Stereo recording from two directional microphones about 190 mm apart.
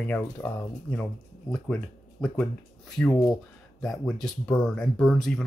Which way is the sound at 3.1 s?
20° left (ahead or behind).